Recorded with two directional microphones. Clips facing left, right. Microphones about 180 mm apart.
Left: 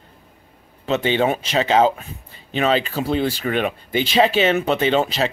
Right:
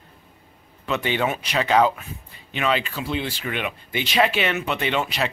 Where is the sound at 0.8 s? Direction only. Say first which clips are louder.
Left 5 dB; 25° left (ahead or behind).